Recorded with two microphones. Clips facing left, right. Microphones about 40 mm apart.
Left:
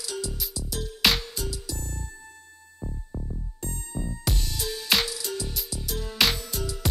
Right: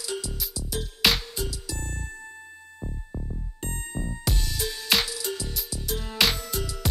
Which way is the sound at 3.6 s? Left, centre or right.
Right.